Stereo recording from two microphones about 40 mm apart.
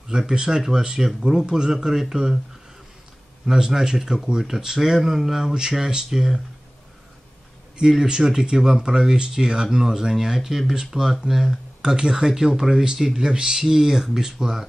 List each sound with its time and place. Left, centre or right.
0.3 s speech: centre
3.4 s speech: centre
7.7 s speech: centre